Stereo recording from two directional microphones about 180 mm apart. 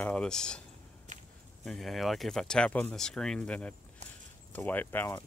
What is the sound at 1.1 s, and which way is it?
Walk, 45° right (ahead or behind).